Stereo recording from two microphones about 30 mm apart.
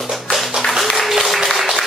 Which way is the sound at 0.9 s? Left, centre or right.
Centre.